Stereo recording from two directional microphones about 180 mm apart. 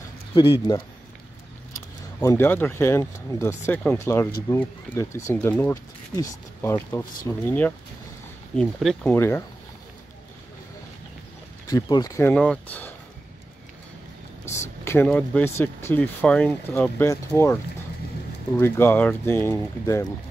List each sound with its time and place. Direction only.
0.3 s speech: 25° left (ahead or behind)
2.1 s speech: 10° left (ahead or behind)
11.6 s speech: 20° left (ahead or behind)
14.9 s speech: 10° left (ahead or behind)
18.6 s speech: 15° left (ahead or behind)